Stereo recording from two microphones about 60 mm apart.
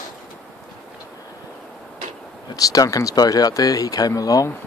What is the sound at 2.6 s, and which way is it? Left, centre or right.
Speech, left.